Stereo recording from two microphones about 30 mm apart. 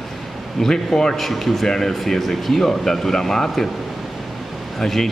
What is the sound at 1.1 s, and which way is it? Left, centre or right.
Speech, centre.